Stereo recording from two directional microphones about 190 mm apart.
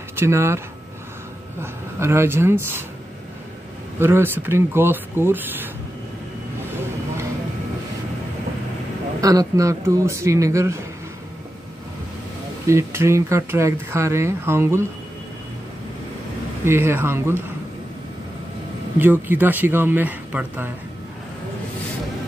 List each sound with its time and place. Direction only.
0.1 s speech: 15° right (ahead or behind)
1.6 s speech: 15° right (ahead or behind)
4.0 s speech: 10° right (ahead or behind)
9.2 s speech: 20° right (ahead or behind)
12.6 s speech: 15° right (ahead or behind)
16.6 s speech: 15° right (ahead or behind)
18.9 s speech: 10° right (ahead or behind)